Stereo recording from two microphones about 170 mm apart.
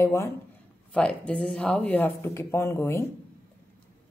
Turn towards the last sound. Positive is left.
turn(degrees=15)  # may be behind; listen again after turning